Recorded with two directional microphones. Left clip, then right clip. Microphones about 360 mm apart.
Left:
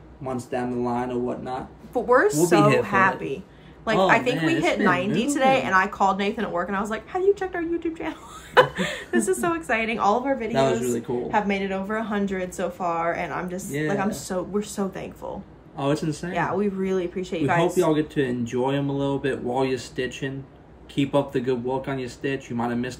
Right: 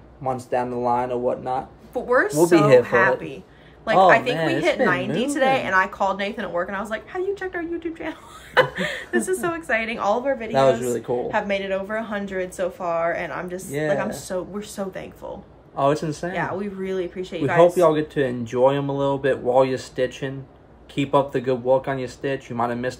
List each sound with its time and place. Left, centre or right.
0.2 s speech: centre
2.0 s a woman's voice: centre
10.5 s speech: centre
11.1 s a woman's voice: centre
15.7 s speech: centre
16.3 s a woman's voice: centre
17.7 s speech: centre